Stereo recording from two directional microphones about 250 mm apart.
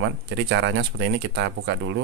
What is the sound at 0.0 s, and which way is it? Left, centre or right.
Speech, right.